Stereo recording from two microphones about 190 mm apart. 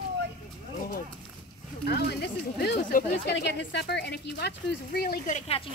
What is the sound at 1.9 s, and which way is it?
Speech, 60° left (ahead or behind).